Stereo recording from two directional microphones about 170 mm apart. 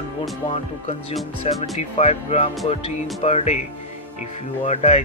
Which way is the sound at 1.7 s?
40° left (ahead or behind).